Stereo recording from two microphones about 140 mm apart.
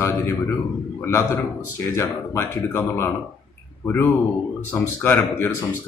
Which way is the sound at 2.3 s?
20° left (ahead or behind).